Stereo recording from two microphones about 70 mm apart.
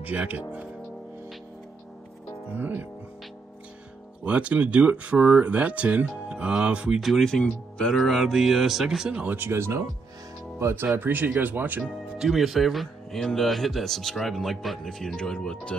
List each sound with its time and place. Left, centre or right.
0.0 s speech: right
2.5 s speech: right
4.2 s speech: centre
7.0 s speech: centre
9.1 s speech: centre
9.4 s speech: right
11.0 s speech: right
11.8 s speech: centre